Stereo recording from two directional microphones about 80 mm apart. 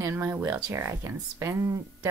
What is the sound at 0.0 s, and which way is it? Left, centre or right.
Speech, right.